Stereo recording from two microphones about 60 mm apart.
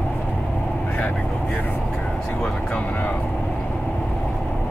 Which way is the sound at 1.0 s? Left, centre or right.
Left.